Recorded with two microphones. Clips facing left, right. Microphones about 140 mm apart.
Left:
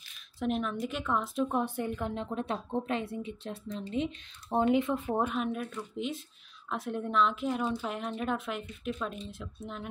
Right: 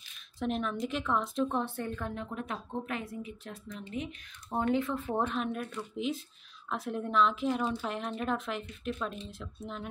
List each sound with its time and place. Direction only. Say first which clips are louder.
0.4 s speech: left 1 dB; centre (ahead or behind)
1.6 s a woman's voice: left 3 dB; 15° left (ahead or behind)
5.1 s speech: even; 5° left (ahead or behind)